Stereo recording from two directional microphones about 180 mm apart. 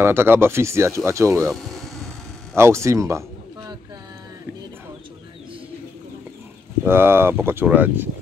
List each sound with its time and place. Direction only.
0.0 s speech: 15° right (ahead or behind)
1.5 s insect: centre (ahead or behind)
2.5 s a sound: 15° right (ahead or behind)
6.8 s speech: 15° right (ahead or behind)